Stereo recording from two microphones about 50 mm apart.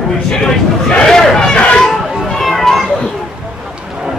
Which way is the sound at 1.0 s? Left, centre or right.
Centre.